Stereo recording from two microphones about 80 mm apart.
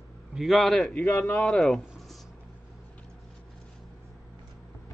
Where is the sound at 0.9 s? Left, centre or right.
Left.